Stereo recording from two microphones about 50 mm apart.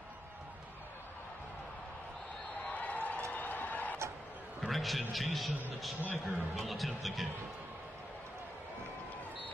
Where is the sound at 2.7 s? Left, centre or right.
Left.